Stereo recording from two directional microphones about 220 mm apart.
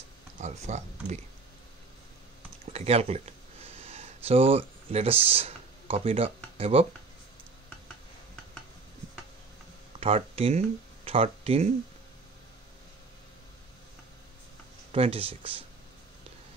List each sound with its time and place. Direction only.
0.4 s speech: 30° right (ahead or behind)
2.6 s speech: 30° right (ahead or behind)
3.8 s a sound: 25° right (ahead or behind)
9.9 s speech: 25° right (ahead or behind)
14.9 s speech: 25° right (ahead or behind)